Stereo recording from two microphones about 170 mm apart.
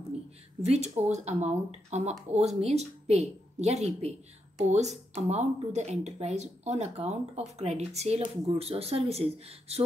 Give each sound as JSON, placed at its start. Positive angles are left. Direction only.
{"t": 0.6, "sound": "a woman's voice", "side_deg": -40}